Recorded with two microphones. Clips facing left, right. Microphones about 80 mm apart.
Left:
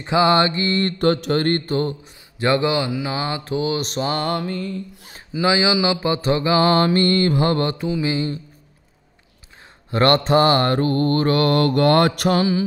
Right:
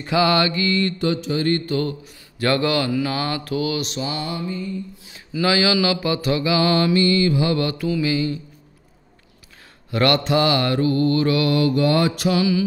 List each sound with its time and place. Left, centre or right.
0.0 s mantra: left
5.3 s mantra: left
9.8 s mantra: left